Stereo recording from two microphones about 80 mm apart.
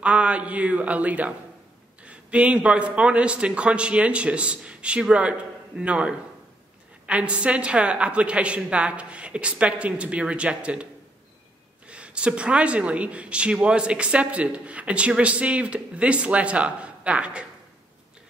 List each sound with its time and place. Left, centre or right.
0.0 s speech: centre
11.9 s speech: centre